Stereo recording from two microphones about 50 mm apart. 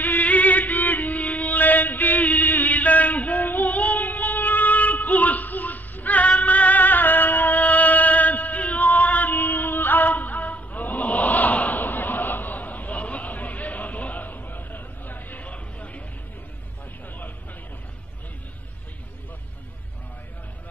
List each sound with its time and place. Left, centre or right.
0.0 s music: left